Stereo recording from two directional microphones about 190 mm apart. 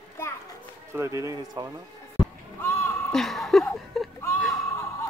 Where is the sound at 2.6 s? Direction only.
15° left (ahead or behind).